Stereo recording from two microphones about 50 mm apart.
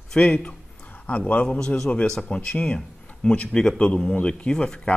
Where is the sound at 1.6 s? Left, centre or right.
Centre.